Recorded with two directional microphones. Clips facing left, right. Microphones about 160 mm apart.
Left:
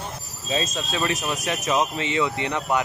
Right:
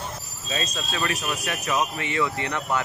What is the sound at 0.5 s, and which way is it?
Speech, 25° left (ahead or behind).